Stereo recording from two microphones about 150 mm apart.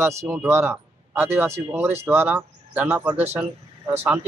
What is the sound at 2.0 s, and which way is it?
Speech, 15° right (ahead or behind).